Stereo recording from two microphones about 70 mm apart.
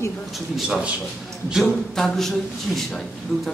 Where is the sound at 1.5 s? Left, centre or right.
Centre.